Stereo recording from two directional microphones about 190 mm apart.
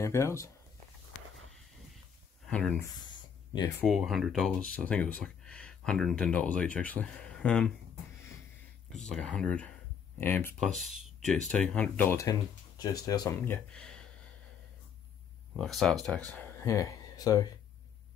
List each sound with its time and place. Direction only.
0.0 s speech: 15° left (ahead or behind)
2.4 s speech: 5° left (ahead or behind)
3.0 s a sound: 20° left (ahead or behind)
3.8 s speech: centre (ahead or behind)
9.0 s speech: 5° left (ahead or behind)
13.7 s speech: 5° left (ahead or behind)
15.5 s speech: centre (ahead or behind)
16.3 s speech: 10° left (ahead or behind)